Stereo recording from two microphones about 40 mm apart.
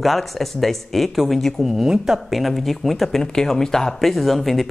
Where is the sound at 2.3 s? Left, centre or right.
Centre.